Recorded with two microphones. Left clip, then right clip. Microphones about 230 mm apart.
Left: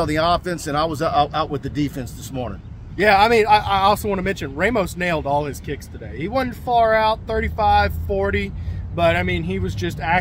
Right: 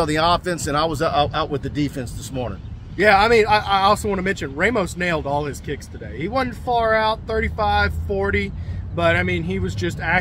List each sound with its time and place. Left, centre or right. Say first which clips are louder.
0.0 s speech: right 1 dB; centre
3.0 s speech: even; centre